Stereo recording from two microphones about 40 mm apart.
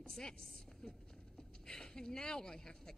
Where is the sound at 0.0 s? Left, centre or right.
Centre.